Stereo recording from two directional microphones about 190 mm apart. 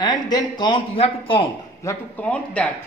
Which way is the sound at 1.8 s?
10° left (ahead or behind).